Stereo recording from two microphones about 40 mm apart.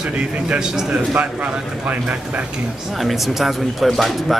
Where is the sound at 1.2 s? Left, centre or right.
Right.